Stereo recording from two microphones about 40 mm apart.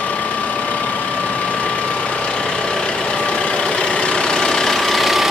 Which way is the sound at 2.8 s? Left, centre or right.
Left.